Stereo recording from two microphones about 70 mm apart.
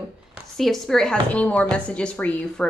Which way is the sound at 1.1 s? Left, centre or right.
Left.